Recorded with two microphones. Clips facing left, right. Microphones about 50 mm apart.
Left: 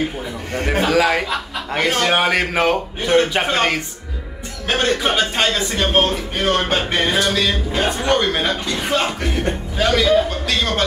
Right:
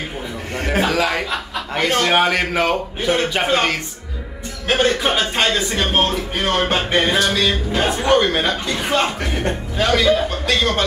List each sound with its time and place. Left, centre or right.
0.7 s a man's voice: centre